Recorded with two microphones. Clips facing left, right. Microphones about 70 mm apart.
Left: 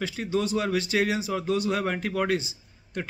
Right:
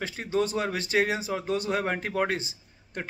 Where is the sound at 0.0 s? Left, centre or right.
Right.